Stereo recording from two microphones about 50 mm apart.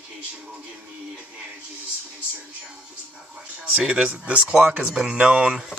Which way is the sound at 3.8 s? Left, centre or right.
Centre.